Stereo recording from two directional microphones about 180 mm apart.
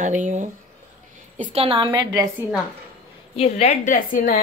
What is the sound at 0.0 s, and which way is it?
Speech, 45° right (ahead or behind).